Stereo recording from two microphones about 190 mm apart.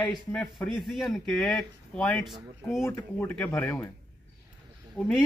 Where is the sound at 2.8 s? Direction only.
15° left (ahead or behind).